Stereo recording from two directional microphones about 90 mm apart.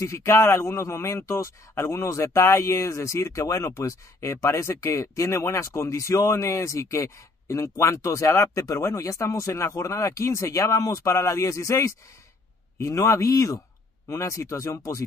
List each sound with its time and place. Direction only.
0.0 s a man's voice: 30° left (ahead or behind)